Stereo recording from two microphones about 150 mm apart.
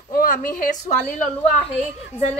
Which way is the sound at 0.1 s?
70° left (ahead or behind).